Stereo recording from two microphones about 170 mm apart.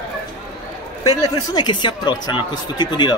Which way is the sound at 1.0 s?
25° left (ahead or behind).